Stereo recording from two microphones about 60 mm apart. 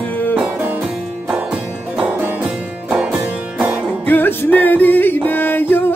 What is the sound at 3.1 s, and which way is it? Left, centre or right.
Music, right.